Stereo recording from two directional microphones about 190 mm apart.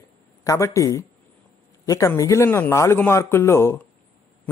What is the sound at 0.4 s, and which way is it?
Speech, 15° left (ahead or behind).